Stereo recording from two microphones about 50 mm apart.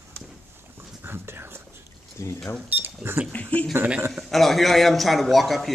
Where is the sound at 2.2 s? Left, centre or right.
Left.